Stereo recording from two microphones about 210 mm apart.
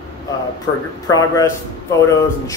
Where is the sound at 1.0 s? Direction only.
15° left (ahead or behind).